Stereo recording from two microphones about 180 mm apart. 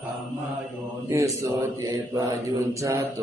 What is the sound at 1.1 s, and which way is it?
Speech, 15° right (ahead or behind).